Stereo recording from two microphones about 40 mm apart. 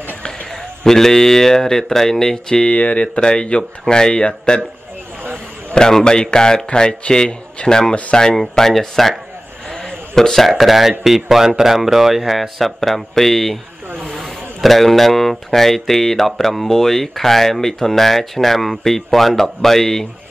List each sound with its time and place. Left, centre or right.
0.5 s speech: centre
2.6 s speech: left
3.2 s speech: left
5.9 s speech: centre